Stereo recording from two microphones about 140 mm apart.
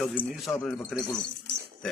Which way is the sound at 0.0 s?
10° left (ahead or behind).